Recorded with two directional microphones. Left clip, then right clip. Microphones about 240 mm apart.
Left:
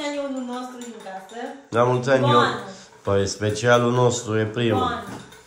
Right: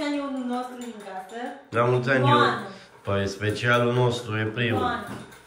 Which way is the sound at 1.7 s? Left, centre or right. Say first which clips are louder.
Left 3 dB; centre.